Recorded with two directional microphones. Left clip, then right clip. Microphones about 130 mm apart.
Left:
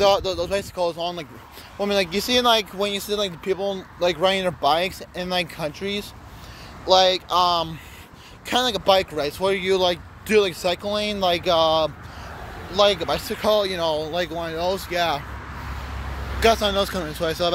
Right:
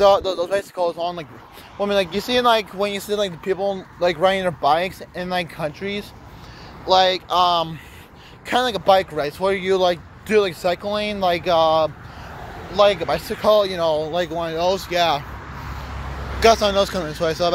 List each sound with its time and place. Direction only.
0.0 s speech: 15° left (ahead or behind)
0.7 s speech: 30° left (ahead or behind)
3.1 s speech: 10° left (ahead or behind); by 7.3 s 30° left (ahead or behind)
7.3 s speech: 20° left (ahead or behind); by 9.6 s 35° left (ahead or behind)
9.6 s speech: 25° left (ahead or behind)
10.2 s speech: 35° left (ahead or behind); by 14.3 s 5° left (ahead or behind)
14.4 s speech: 20° right (ahead or behind)
15.5 s vehicle: 55° right (ahead or behind)
16.3 s speech: 5° left (ahead or behind); by 17.5 s 25° left (ahead or behind)